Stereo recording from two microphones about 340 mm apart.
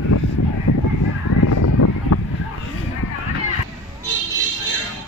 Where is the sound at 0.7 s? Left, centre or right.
Left.